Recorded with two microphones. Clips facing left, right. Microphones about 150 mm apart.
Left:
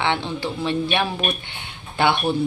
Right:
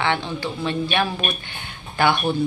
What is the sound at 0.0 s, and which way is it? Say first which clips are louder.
Speech: even; 20° left (ahead or behind).